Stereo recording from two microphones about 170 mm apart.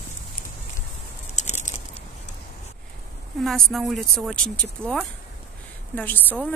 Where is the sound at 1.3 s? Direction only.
45° left (ahead or behind).